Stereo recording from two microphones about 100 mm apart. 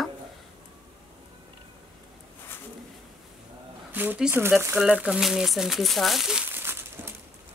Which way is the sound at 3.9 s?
20° right (ahead or behind).